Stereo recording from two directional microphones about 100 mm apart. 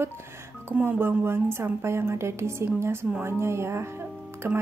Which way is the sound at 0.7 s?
20° right (ahead or behind).